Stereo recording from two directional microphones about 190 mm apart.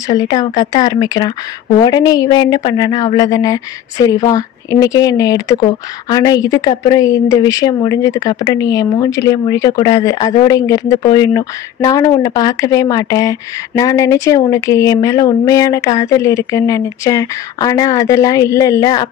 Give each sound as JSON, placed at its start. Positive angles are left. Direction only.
{"t": 0.1, "sound": "speech", "side_deg": 20}